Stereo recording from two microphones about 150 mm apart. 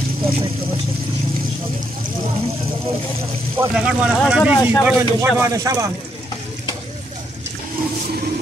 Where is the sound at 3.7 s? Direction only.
5° right (ahead or behind).